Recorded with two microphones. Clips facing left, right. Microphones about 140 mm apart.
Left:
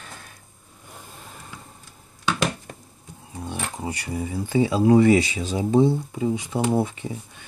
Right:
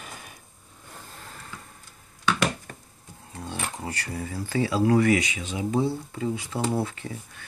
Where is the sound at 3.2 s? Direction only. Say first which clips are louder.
Left 2 dB; 10° left (ahead or behind).